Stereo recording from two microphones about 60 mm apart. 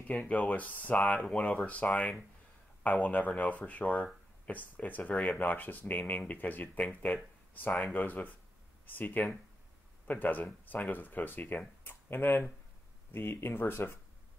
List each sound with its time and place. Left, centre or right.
0.0 s speech: left